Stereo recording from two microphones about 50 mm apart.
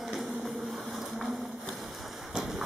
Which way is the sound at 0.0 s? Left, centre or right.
Centre.